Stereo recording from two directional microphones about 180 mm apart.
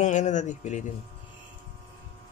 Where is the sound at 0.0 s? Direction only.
40° left (ahead or behind).